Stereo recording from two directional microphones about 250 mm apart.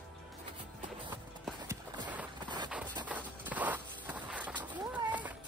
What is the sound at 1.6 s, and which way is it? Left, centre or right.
Clip-clop, centre.